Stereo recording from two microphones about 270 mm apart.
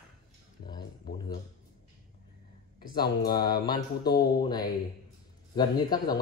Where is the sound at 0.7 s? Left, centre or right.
Centre.